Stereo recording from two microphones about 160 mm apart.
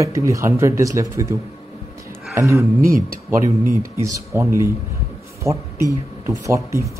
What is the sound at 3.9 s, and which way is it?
Speech, 20° right (ahead or behind).